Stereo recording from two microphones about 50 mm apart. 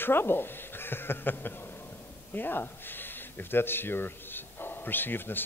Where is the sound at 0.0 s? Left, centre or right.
Left.